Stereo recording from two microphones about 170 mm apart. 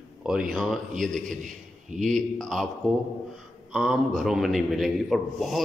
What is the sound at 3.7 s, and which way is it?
A man's voice, centre (ahead or behind).